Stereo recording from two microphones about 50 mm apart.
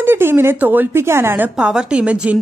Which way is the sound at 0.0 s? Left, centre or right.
Right.